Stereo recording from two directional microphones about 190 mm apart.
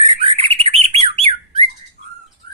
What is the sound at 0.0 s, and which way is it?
Bird, 30° right (ahead or behind).